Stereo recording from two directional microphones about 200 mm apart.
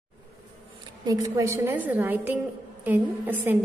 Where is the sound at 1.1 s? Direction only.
15° right (ahead or behind).